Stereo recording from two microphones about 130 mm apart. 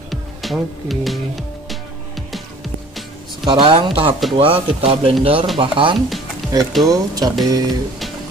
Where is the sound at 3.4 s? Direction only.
40° right (ahead or behind).